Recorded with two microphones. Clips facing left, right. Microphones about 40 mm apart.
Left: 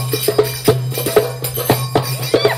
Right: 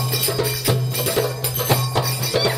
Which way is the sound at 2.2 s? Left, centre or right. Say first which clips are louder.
Left 8 dB; centre.